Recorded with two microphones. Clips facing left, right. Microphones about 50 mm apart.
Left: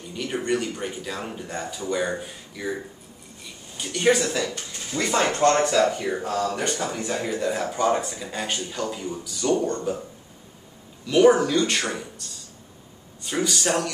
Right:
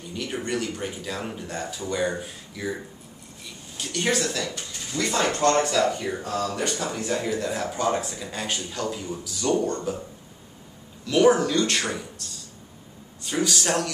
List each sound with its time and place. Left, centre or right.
0.1 s speech: centre
4.9 s speech: left
6.9 s speech: centre
11.1 s speech: centre